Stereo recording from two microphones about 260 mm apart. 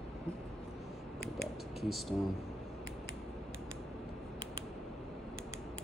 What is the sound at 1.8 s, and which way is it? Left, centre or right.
Speech, centre.